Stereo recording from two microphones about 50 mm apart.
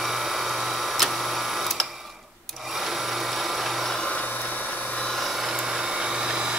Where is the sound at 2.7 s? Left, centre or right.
Centre.